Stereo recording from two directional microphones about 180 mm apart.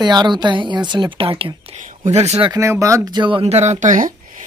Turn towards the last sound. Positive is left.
turn(degrees=-45)  # may be behind; listen again after turning